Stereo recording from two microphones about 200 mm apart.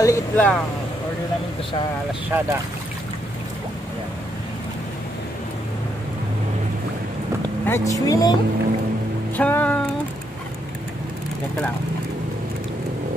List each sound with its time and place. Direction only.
0.0 s speech: 15° left (ahead or behind)
2.3 s speech: 10° right (ahead or behind)
7.6 s speech: 15° left (ahead or behind)
9.4 s speech: 5° left (ahead or behind)